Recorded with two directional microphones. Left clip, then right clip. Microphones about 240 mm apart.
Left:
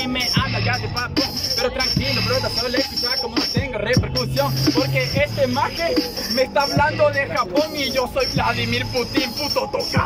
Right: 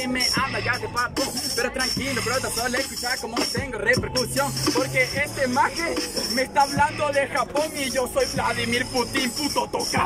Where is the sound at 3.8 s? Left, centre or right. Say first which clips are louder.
Right 1 dB; centre.